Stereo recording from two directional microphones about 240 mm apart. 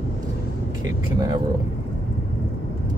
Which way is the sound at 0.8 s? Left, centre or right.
Centre.